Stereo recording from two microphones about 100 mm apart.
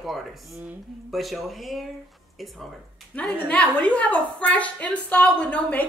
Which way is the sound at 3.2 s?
15° left (ahead or behind).